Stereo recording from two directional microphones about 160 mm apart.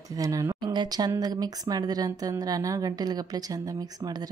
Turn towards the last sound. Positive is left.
turn(degrees=-25)  # may be behind; listen again after turning